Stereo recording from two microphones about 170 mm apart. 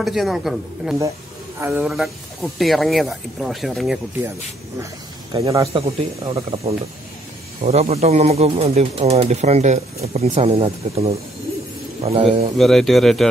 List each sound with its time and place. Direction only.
0.0 s speech: centre (ahead or behind)
5.3 s speech: 30° right (ahead or behind)
12.5 s speech: centre (ahead or behind)